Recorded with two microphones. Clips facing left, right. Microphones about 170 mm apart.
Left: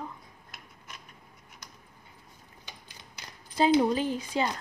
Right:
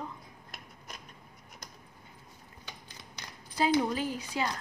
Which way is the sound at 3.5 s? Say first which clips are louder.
Left 4 dB; 25° left (ahead or behind).